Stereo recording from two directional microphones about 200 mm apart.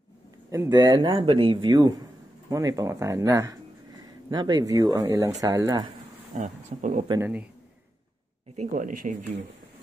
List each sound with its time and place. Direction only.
0.5 s speech: 15° right (ahead or behind)
6.3 s speech: 40° right (ahead or behind)
7.1 s speech: 10° right (ahead or behind)
8.5 s speech: 40° right (ahead or behind)